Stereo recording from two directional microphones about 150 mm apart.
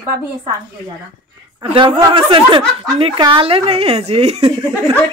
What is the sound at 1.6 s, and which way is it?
A woman's voice, 35° right (ahead or behind).